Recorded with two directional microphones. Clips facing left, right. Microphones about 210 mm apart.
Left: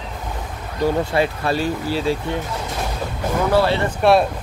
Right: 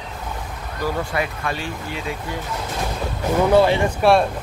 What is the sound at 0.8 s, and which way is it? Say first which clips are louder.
Speech: left 5 dB; 30° left (ahead or behind).